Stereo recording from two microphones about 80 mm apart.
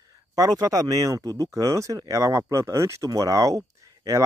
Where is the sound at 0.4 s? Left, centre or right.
Right.